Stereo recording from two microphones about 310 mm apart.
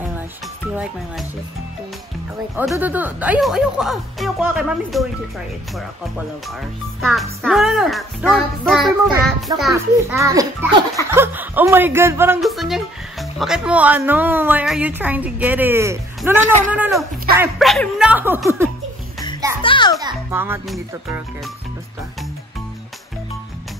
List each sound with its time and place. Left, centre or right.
2.5 s speech: centre
7.0 s a child's voice: centre
19.6 s music: centre
20.0 s a child's voice: centre